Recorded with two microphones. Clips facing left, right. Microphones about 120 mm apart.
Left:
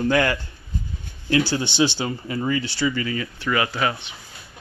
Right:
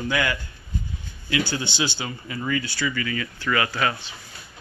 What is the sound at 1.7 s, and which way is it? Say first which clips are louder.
Speech: left 7 dB; 30° left (ahead or behind).